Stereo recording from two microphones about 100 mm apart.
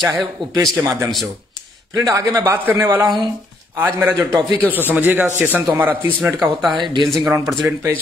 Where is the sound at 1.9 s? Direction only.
40° right (ahead or behind).